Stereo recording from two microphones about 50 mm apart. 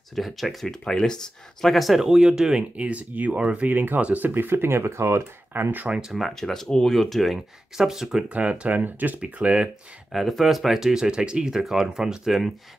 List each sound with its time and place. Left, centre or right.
0.1 s speech: centre
0.7 s speech: centre
1.7 s speech: centre
2.7 s speech: right
3.7 s speech: right
5.5 s speech: right
5.9 s speech: centre
6.1 s speech: centre
8.3 s speech: right
10.1 s speech: centre